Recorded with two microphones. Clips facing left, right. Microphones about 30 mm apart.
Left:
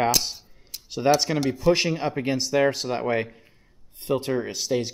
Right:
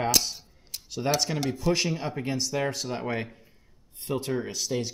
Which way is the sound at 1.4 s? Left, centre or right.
Centre.